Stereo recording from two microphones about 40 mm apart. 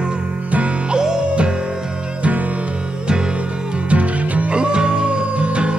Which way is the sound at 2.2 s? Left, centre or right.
Right.